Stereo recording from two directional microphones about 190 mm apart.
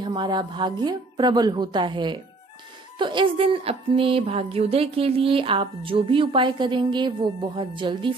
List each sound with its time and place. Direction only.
0.0 s speech: 25° right (ahead or behind)